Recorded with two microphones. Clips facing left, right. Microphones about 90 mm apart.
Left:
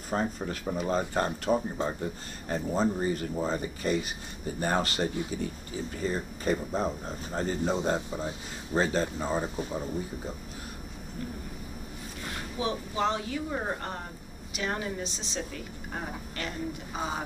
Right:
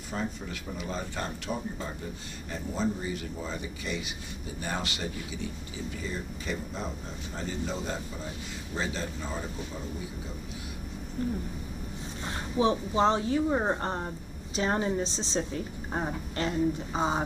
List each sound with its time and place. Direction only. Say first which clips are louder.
0.1 s speech: left 4 dB; 40° left (ahead or behind)
12.3 s a woman's voice: right 6 dB; 30° right (ahead or behind)